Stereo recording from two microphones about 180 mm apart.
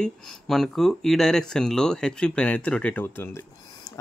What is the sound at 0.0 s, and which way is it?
Speech, centre (ahead or behind).